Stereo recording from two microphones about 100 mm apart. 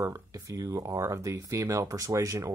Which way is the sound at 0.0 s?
35° right (ahead or behind).